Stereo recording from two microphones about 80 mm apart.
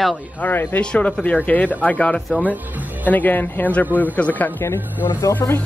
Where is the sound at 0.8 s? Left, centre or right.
Centre.